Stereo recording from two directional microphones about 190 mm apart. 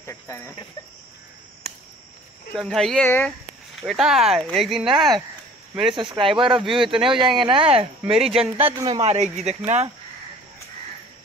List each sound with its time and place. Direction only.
0.0 s cricket: 15° left (ahead or behind)
2.5 s speech: centre (ahead or behind)
5.9 s speech: 25° right (ahead or behind)
6.6 s speech: centre (ahead or behind)
6.9 s speech: 25° right (ahead or behind)